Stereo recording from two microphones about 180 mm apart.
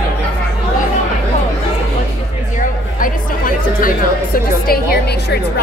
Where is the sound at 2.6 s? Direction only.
50° left (ahead or behind).